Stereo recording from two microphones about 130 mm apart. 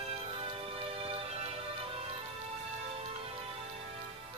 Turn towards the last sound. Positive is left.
turn(degrees=-50)  # may be behind; listen again after turning